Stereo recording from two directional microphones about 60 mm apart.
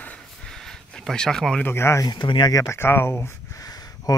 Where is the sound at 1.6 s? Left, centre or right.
Left.